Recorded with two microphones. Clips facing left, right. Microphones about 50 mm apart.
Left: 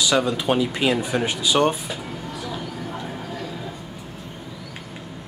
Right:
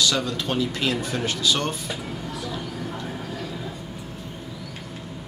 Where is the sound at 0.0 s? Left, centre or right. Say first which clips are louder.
Left 4 dB; centre.